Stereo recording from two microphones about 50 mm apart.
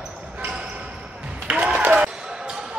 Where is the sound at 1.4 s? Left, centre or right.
Right.